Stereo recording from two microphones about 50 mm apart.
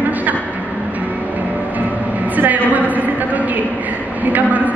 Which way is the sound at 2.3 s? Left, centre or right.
Right.